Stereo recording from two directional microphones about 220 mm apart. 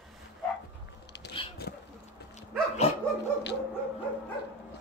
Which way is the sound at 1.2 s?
50° left (ahead or behind).